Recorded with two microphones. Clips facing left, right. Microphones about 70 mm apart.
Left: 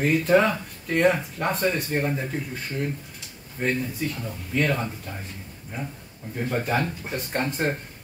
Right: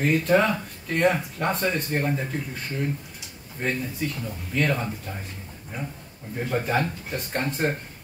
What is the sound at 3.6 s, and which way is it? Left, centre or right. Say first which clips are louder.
Speech: left 2 dB; centre.